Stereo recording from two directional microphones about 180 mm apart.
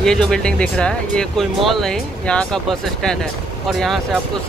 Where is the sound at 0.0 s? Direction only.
5° left (ahead or behind).